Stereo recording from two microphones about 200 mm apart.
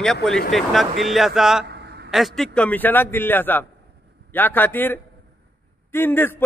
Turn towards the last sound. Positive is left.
turn(degrees=10)  # may be behind; listen again after turning